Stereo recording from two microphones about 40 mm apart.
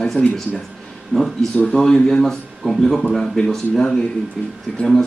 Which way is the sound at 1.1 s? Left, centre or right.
Centre.